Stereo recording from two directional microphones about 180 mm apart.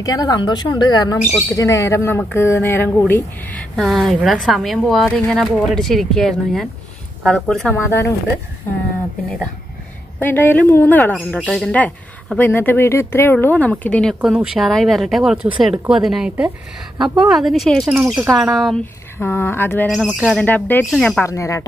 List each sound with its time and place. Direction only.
0.0 s a woman's voice: 20° left (ahead or behind)
10.1 s speech: 10° left (ahead or behind)
17.9 s speech: 15° right (ahead or behind)
19.1 s speech: 15° left (ahead or behind)
19.9 s speech: 5° right (ahead or behind)
20.4 s speech: 10° left (ahead or behind)
21.2 s speech: 15° left (ahead or behind)